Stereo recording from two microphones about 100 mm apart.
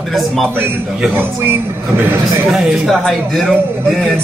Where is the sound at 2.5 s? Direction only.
Centre (ahead or behind).